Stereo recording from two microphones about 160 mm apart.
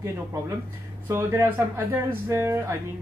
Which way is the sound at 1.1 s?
15° right (ahead or behind).